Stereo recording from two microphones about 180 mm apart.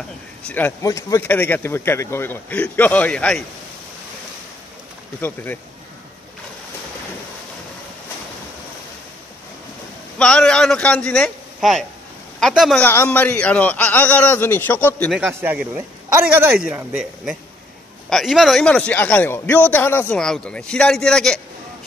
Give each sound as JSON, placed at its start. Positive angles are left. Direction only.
{"t": 0.5, "sound": "speech", "side_deg": 10}
{"t": 5.2, "sound": "speech", "side_deg": 10}
{"t": 10.1, "sound": "a man's voice", "side_deg": 5}
{"t": 12.8, "sound": "speech", "side_deg": 10}
{"t": 15.1, "sound": "a man's voice", "side_deg": -5}